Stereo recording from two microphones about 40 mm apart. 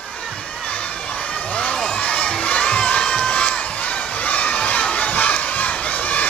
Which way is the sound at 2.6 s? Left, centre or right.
Left.